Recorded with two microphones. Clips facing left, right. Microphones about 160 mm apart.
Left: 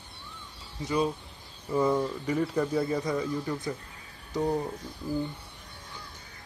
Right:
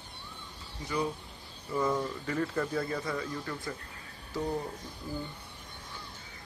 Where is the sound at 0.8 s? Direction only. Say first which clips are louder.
Left 5 dB; 20° left (ahead or behind).